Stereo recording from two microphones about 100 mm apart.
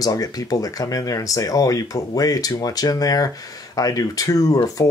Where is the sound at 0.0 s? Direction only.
40° left (ahead or behind).